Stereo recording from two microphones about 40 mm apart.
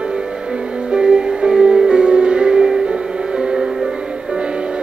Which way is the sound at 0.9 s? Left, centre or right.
Right.